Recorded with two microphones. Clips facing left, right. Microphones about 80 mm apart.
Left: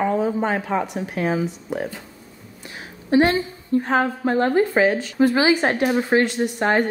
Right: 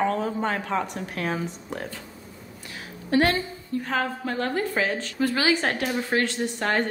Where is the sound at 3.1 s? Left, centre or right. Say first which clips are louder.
Left 5 dB; left.